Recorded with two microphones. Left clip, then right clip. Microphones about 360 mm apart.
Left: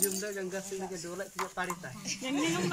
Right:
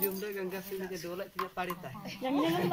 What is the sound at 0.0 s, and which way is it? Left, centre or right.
Speech, centre.